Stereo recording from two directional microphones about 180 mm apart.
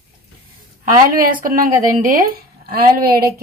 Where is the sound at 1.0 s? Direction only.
50° right (ahead or behind).